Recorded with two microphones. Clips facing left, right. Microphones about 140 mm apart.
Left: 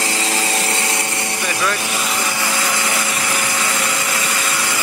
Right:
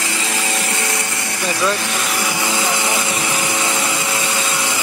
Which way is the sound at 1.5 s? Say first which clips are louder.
Right 3 dB; 20° right (ahead or behind).